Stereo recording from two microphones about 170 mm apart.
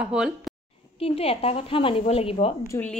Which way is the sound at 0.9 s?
35° left (ahead or behind).